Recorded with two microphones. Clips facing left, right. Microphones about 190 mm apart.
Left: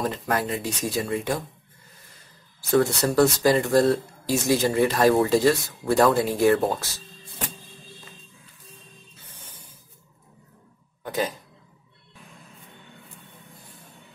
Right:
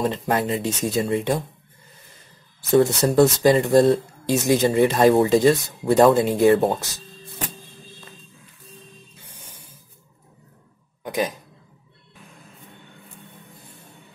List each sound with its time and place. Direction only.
0.0 s speech: 25° right (ahead or behind)
3.0 s speech: 20° right (ahead or behind)
11.1 s speech: 15° right (ahead or behind)